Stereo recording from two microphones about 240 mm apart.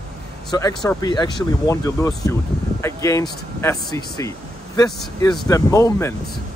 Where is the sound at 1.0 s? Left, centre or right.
Centre.